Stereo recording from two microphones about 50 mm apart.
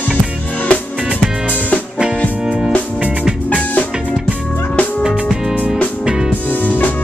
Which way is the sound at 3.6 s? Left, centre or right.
Left.